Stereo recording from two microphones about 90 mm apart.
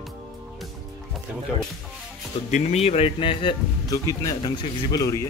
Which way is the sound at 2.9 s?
80° left.